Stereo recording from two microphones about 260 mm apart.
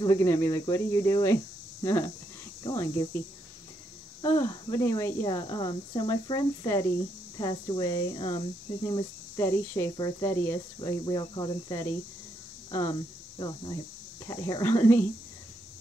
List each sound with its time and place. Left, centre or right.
0.0 s speech: centre
4.2 s speech: centre
13.4 s speech: centre